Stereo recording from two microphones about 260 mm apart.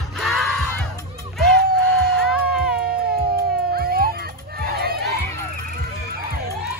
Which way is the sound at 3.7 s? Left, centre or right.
Right.